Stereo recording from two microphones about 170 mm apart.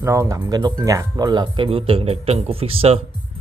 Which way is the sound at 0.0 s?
15° right (ahead or behind).